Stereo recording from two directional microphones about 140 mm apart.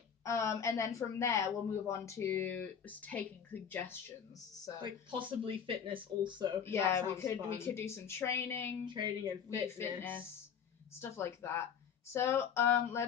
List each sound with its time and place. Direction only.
0.2 s a woman's voice: 20° left (ahead or behind)
4.8 s speech: 35° right (ahead or behind)
6.6 s speech: 15° left (ahead or behind)
8.8 s speech: 35° right (ahead or behind)
9.8 s speech: 15° left (ahead or behind)